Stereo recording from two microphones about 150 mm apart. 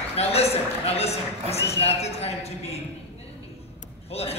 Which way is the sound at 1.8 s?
45° left (ahead or behind).